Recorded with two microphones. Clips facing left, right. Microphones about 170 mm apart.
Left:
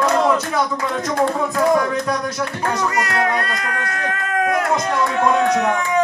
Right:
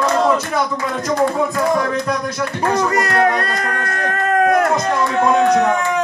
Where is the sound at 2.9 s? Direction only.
40° right (ahead or behind).